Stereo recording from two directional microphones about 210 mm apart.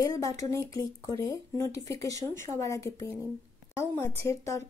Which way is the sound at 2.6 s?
15° left (ahead or behind).